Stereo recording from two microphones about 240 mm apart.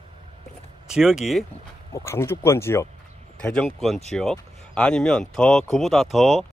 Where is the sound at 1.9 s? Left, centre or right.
Centre.